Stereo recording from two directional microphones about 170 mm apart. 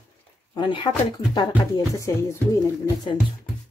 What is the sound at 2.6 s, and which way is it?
Speech, 25° left (ahead or behind).